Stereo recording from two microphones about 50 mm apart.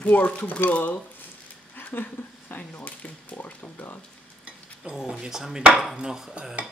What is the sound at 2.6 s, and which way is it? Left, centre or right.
Speech, left.